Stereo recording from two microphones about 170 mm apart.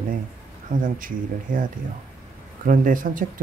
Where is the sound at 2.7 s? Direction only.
50° right (ahead or behind).